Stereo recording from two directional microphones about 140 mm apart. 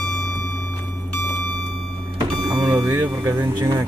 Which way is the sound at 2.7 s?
25° right (ahead or behind).